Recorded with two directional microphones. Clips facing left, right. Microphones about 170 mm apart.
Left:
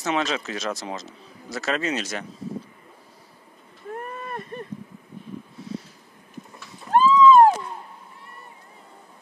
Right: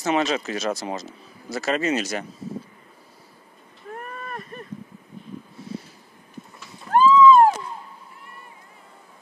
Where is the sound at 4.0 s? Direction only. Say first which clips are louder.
Left 1 dB; 30° left (ahead or behind).